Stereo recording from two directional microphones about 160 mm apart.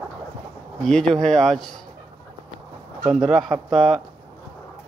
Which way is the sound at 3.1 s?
Centre (ahead or behind).